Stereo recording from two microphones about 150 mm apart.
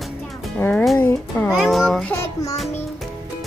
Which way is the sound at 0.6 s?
5° left (ahead or behind).